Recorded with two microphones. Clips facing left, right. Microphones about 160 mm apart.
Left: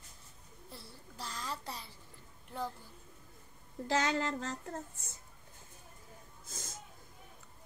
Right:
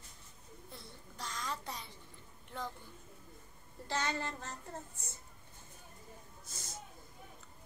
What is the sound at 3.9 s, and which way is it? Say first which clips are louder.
Child singing: left 5 dB; 90° left.